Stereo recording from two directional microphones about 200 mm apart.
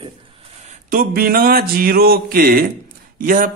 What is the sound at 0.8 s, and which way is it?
A man's voice, 45° right (ahead or behind).